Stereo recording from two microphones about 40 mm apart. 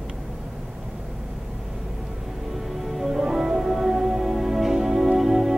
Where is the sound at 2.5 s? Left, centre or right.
Centre.